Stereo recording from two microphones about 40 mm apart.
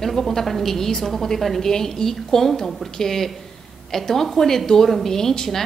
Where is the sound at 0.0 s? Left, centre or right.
Centre.